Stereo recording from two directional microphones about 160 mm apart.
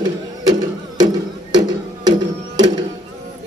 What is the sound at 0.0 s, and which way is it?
Music, 25° right (ahead or behind).